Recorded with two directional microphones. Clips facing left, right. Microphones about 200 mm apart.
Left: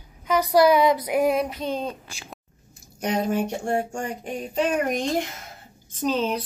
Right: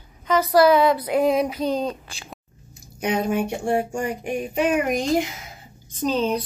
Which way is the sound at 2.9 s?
Centre (ahead or behind).